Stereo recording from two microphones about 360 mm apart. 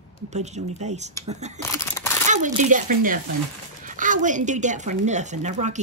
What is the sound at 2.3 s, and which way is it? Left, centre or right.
Speech, centre.